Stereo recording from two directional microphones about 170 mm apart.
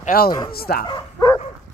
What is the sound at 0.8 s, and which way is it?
Bow-wow, 25° left (ahead or behind).